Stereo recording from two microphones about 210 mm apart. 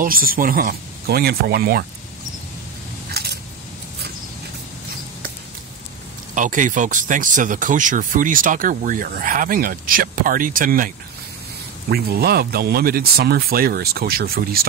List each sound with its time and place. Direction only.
0.0 s speech: 40° right (ahead or behind)
3.1 s a sound: 50° right (ahead or behind)
6.3 s speech: 40° right (ahead or behind)
11.9 s speech: 50° right (ahead or behind)